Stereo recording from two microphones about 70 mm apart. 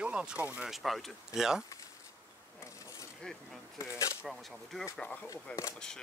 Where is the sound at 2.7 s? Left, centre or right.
Left.